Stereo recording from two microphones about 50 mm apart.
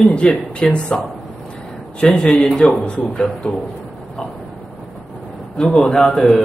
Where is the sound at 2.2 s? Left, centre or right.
Centre.